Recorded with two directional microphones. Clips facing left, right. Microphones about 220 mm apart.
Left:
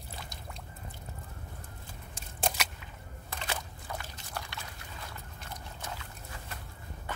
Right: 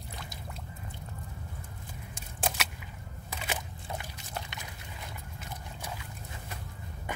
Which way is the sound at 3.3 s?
15° right (ahead or behind).